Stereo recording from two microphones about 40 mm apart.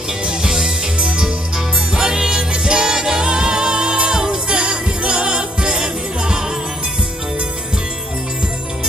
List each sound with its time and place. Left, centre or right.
0.2 s music: right